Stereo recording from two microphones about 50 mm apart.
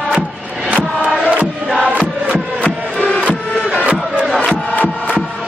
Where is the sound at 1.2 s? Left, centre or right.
Right.